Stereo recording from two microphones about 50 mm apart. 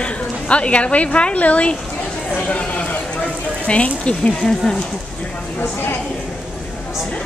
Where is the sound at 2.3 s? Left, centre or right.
Left.